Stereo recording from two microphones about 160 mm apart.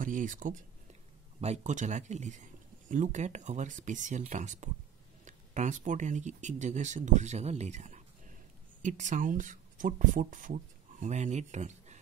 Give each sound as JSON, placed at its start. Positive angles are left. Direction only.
{"t": 0.0, "sound": "speech", "side_deg": -55}